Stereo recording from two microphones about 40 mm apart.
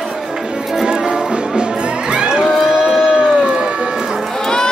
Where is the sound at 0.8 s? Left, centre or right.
Centre.